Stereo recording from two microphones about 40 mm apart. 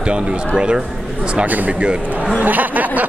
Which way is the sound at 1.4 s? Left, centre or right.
Right.